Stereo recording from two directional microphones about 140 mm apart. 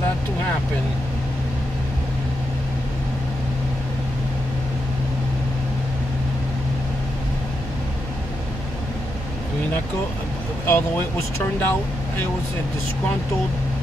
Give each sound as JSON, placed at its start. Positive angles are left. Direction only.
{"t": 10.7, "sound": "speech", "side_deg": 15}